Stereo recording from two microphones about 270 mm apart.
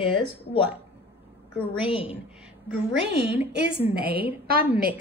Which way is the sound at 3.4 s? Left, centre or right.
Right.